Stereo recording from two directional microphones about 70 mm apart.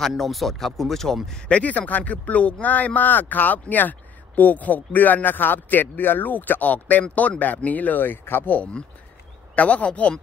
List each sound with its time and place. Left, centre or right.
0.0 s speech: centre
1.5 s a man's voice: centre